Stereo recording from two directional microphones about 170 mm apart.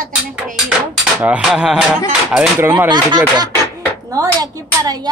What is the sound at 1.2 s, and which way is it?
Speech, 5° right (ahead or behind).